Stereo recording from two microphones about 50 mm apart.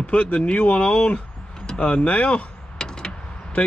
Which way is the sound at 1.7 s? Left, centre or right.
Left.